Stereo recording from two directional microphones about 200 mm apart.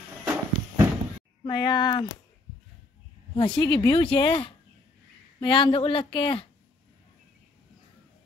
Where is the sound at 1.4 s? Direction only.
20° left (ahead or behind).